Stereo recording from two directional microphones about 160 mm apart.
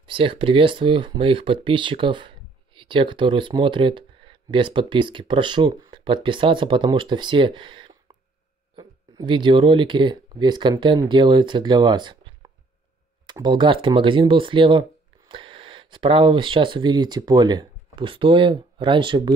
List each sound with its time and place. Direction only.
0.0 s speech: 30° right (ahead or behind)